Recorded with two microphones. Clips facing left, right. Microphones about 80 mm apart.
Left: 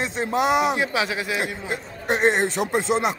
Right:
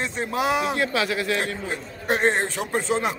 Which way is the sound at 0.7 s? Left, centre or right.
Centre.